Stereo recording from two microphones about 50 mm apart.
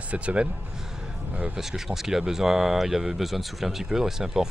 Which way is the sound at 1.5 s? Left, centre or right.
Centre.